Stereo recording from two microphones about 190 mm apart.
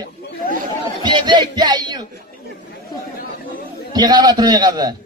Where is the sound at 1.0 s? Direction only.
25° right (ahead or behind).